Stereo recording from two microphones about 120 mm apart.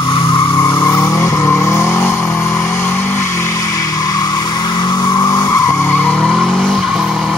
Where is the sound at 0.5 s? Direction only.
30° left (ahead or behind).